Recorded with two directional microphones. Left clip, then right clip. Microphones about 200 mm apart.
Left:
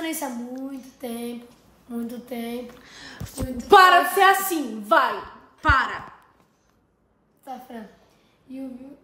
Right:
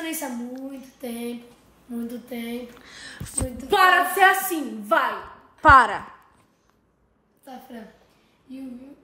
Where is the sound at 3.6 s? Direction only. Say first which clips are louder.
Left 5 dB; 35° left (ahead or behind).